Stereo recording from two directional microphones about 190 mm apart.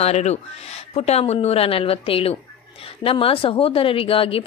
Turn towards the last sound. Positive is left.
turn(degrees=30)  # may be behind; listen again after turning